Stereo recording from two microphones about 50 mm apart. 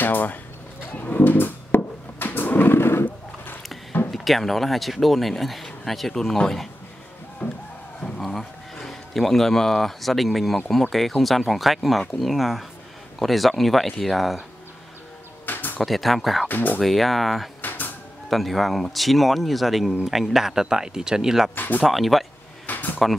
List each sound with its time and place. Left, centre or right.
0.0 s a sound: left
4.1 s speech: centre
7.4 s music: left
8.2 s speech: centre
15.4 s a sound: left
15.8 s speech: centre
16.4 s speech: left
16.8 s speech: centre
17.6 s cupboard open or close: left
18.3 s speech: centre
21.5 s speech: left
21.8 s speech: centre
22.7 s a sound: left